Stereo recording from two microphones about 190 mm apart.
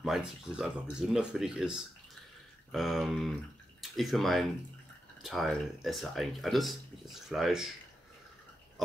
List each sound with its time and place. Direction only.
0.0 s speech: 5° right (ahead or behind)